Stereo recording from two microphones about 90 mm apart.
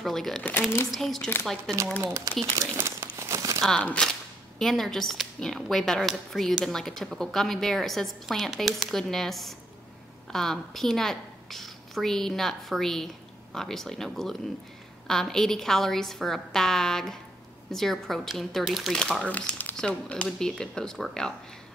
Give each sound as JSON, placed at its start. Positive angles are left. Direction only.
{"t": 0.0, "sound": "speech", "side_deg": 5}
{"t": 0.5, "sound": "speech", "side_deg": 25}
{"t": 0.9, "sound": "speech", "side_deg": 0}
{"t": 2.3, "sound": "speech", "side_deg": -45}
{"t": 3.2, "sound": "crumpling", "side_deg": -35}
{"t": 3.6, "sound": "a woman's voice", "side_deg": 10}
{"t": 18.9, "sound": "speech", "side_deg": 10}